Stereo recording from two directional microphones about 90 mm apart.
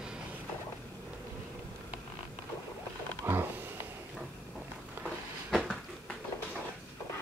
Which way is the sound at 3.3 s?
25° right (ahead or behind).